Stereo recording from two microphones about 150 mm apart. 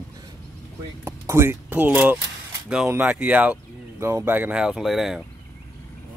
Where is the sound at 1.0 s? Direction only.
20° right (ahead or behind); by 5.2 s centre (ahead or behind).